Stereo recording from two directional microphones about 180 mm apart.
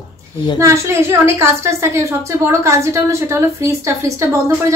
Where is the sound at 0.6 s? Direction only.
15° right (ahead or behind).